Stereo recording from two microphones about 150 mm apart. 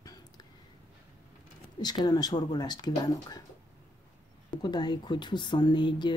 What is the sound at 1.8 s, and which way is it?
Speech, 25° left (ahead or behind).